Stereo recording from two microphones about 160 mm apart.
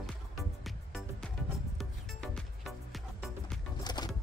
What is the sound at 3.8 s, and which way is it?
Music, 25° left (ahead or behind).